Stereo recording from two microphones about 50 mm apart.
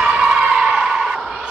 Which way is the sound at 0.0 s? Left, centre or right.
Centre.